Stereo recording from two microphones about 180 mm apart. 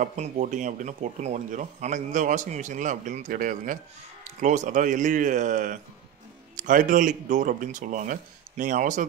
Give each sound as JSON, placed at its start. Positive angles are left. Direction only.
{"t": 0.0, "sound": "speech", "side_deg": -40}